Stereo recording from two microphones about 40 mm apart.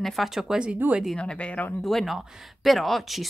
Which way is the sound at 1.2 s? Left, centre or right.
Left.